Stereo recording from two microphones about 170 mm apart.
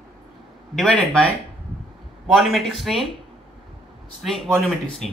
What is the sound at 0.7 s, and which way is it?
Speech, 5° left (ahead or behind).